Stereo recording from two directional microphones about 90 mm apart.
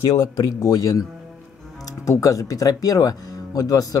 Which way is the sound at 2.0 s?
40° left (ahead or behind).